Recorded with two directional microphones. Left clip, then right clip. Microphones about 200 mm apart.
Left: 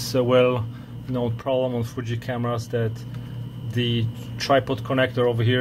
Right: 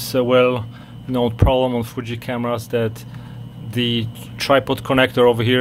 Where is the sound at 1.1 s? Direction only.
25° right (ahead or behind).